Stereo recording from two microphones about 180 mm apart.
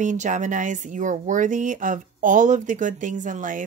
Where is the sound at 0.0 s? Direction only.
45° right (ahead or behind).